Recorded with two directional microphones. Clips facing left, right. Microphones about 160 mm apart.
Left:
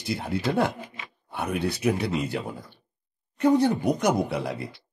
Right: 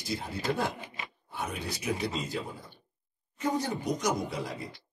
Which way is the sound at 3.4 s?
60° left (ahead or behind).